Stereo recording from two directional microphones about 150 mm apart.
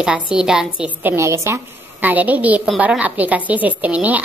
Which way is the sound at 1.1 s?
20° right (ahead or behind).